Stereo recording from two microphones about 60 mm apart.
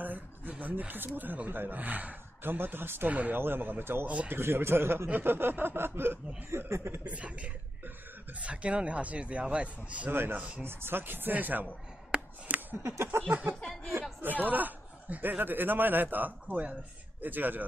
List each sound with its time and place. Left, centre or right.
0.0 s speech: right
3.1 s a man's voice: right
3.3 s speech: right
6.7 s a sound: right
7.1 s a man's voice: right
10.1 s speech: right
12.1 s a sound: centre
12.7 s a sound: right
13.3 s a man's voice: right